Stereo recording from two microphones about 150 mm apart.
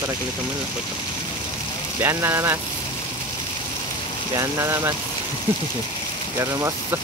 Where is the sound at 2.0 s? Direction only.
15° right (ahead or behind).